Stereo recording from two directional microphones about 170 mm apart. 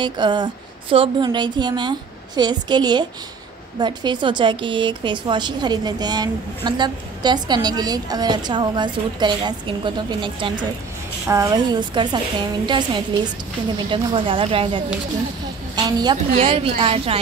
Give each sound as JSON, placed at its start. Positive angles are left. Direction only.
{"t": 0.0, "sound": "a woman's voice", "side_deg": -25}
{"t": 16.3, "sound": "speech", "side_deg": -35}